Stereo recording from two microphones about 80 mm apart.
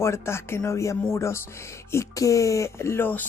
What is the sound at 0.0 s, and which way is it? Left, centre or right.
Speech, left.